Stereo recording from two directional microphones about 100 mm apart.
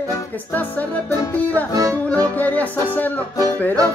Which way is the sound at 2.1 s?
15° left (ahead or behind).